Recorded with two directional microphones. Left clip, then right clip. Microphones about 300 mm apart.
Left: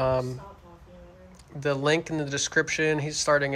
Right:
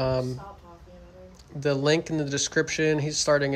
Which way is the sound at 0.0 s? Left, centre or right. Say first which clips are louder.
Left 1 dB; centre.